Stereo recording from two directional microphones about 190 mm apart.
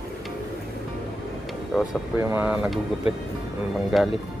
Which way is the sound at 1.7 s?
Centre (ahead or behind).